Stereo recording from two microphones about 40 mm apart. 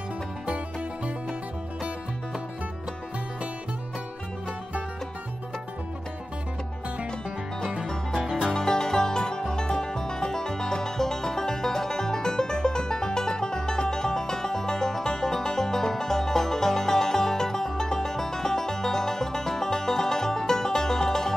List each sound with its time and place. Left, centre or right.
7.8 s music: centre
8.2 s music: centre
8.5 s music: centre